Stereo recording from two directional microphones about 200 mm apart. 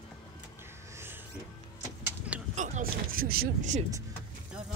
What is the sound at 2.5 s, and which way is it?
Speech, 35° right (ahead or behind).